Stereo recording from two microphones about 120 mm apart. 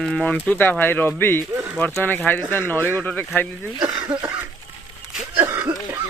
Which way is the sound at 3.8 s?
35° right (ahead or behind).